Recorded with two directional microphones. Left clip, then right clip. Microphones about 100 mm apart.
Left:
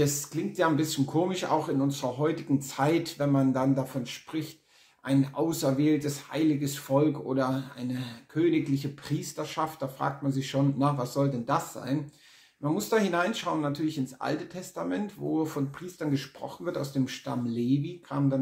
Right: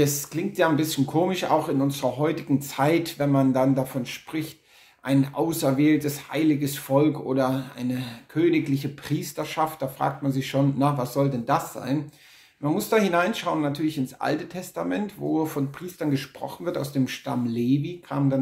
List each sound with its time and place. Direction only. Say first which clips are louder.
0.0 s speech: right 4 dB; 30° right (ahead or behind)